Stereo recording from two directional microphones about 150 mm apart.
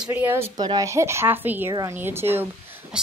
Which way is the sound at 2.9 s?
5° right (ahead or behind).